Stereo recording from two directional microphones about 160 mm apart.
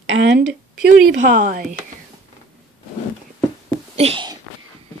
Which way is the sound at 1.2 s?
55° right (ahead or behind).